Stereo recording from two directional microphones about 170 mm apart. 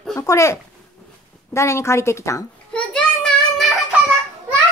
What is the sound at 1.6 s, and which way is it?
Speech, 15° left (ahead or behind).